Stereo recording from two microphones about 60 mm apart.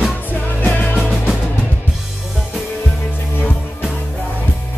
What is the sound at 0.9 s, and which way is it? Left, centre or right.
Music, centre.